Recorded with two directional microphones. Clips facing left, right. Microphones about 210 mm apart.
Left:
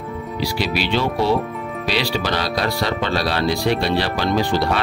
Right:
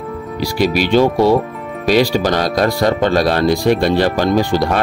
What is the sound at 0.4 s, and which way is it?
Speech, 45° right (ahead or behind).